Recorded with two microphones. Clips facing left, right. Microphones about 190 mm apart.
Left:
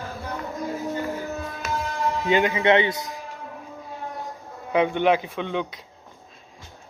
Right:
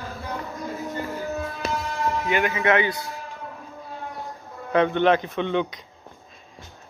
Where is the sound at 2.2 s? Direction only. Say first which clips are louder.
Left 4 dB; 25° left (ahead or behind).